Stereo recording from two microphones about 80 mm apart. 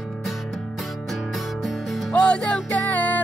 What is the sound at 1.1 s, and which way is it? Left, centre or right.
Music, centre.